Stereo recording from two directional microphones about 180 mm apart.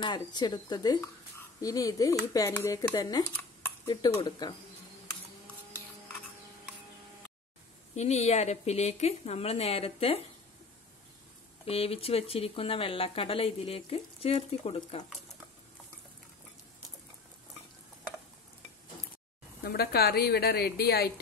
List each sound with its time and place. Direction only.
0.0 s speech: 25° left (ahead or behind)
7.9 s speech: 40° left (ahead or behind)
11.6 s speech: 30° left (ahead or behind)
19.6 s a woman's voice: 60° left (ahead or behind)